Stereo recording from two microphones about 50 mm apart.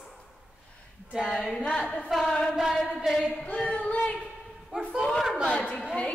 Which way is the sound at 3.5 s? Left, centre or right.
Left.